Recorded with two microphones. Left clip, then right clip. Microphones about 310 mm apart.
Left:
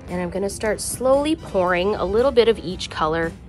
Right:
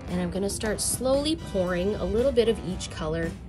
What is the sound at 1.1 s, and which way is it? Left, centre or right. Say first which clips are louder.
Speech: left 6 dB; centre.